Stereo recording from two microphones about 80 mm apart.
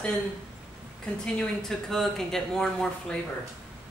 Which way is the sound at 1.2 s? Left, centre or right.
Centre.